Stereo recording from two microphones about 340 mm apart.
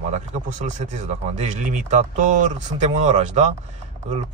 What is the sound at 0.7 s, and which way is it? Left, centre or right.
A man's voice, right.